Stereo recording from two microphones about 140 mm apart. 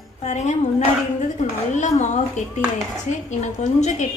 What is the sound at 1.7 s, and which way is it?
Speech, 60° left (ahead or behind).